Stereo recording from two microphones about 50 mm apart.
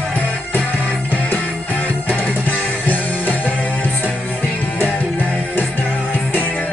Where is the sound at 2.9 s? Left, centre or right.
Left.